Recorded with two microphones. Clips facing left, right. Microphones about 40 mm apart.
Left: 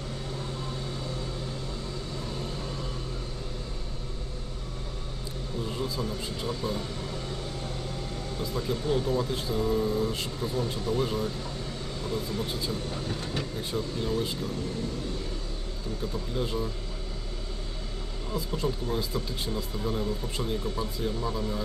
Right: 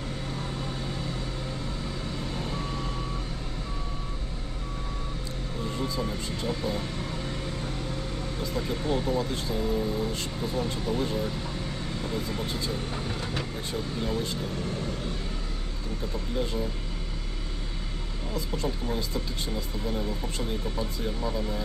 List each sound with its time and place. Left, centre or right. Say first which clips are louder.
2.3 s vehicle: right 2 dB; right
6.4 s speech: right 2 dB; centre
8.5 s speech: left 1 dB; centre
10.5 s speech: even; centre
12.1 s speech: left 2 dB; centre
12.4 s speech: right 1 dB; centre
18.6 s speech: left 2 dB; centre
21.0 s speech: left 1 dB; centre